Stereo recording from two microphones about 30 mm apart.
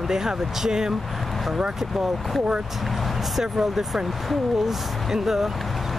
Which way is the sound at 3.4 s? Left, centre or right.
Centre.